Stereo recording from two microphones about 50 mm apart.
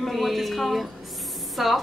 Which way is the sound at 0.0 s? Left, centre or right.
Centre.